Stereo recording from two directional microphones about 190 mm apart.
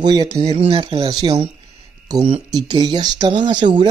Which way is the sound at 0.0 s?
20° right (ahead or behind).